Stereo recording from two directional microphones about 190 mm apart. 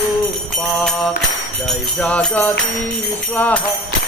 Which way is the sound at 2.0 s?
5° left (ahead or behind).